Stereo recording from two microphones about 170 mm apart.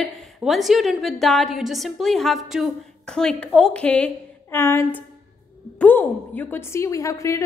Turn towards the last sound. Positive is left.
turn(degrees=20)  # may be behind; listen again after turning